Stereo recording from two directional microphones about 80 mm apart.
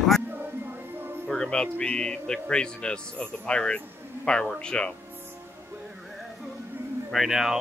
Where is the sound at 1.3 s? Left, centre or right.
Centre.